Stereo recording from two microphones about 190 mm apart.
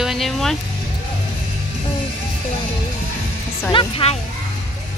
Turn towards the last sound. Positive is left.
turn(degrees=30)  # may be behind; listen again after turning